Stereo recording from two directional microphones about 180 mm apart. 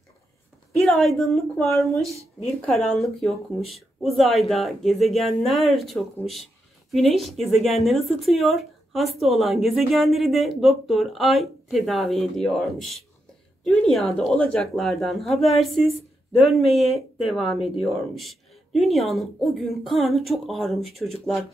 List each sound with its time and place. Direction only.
0.7 s speech: centre (ahead or behind)